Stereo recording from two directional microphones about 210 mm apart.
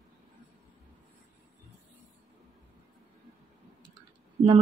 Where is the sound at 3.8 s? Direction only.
20° right (ahead or behind).